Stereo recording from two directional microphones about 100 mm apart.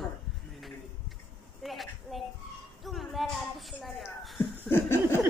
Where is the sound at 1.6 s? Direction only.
Centre (ahead or behind).